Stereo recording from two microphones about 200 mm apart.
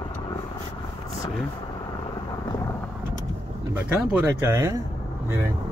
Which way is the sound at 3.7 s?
10° right (ahead or behind).